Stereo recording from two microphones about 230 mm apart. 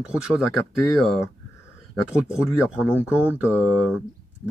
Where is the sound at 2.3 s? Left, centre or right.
Centre.